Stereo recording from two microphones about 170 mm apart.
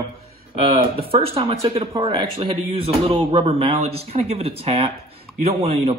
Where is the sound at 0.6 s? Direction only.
35° right (ahead or behind).